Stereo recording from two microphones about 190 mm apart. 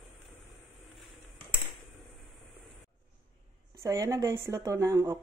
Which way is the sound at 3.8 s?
15° right (ahead or behind).